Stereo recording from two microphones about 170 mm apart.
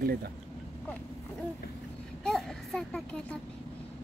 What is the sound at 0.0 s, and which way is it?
Speech, 65° right (ahead or behind).